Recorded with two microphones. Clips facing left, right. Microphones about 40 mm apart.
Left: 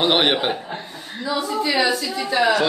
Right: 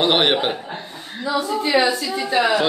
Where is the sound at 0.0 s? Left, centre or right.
Centre.